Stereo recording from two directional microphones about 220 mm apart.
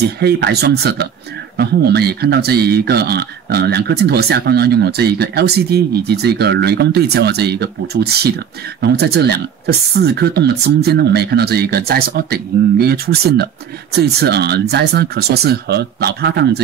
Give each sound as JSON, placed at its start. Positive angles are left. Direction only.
{"t": 0.2, "sound": "speech", "side_deg": -50}